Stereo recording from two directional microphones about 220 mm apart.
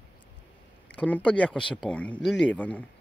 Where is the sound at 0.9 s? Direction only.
5° left (ahead or behind).